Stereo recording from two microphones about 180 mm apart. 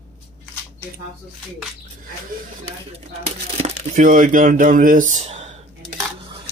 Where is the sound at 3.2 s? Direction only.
40° right (ahead or behind).